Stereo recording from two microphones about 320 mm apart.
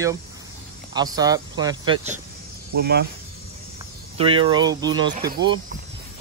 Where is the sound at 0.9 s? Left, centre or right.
Centre.